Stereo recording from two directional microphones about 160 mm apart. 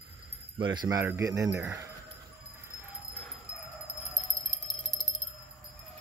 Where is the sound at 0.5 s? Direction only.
30° right (ahead or behind).